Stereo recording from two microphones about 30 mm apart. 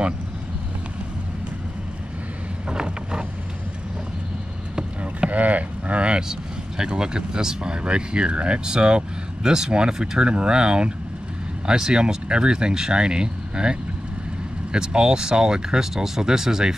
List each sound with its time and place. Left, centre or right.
2.7 s vehicle: right
5.3 s cattle: right
6.8 s speech: right